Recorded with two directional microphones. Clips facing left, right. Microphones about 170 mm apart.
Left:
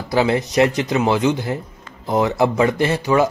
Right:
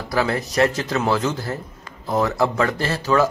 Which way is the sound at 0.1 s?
25° left (ahead or behind).